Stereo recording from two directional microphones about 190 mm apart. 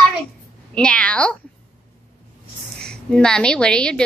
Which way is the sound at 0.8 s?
5° left (ahead or behind).